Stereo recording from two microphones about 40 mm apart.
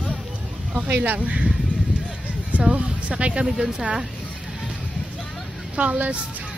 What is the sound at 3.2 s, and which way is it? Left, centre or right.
Speech, right.